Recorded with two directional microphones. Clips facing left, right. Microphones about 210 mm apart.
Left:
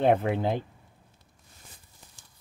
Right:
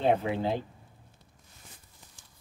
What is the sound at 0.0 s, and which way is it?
Speech, 55° left (ahead or behind).